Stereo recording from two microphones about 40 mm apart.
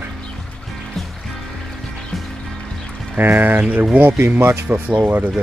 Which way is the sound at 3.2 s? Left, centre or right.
Right.